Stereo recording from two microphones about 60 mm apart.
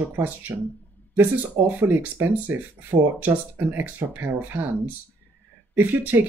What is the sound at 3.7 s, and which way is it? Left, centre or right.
Speech, right.